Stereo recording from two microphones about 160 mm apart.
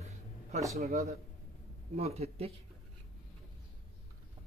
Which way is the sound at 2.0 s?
40° right (ahead or behind).